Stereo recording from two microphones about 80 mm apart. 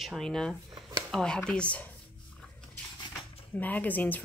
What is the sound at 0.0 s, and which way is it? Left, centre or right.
Speech, centre.